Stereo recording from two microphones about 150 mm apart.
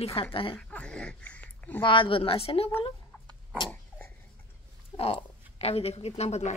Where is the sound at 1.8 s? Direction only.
35° left (ahead or behind).